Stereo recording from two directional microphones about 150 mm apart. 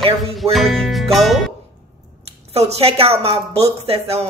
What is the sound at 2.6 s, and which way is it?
Music, 45° right (ahead or behind).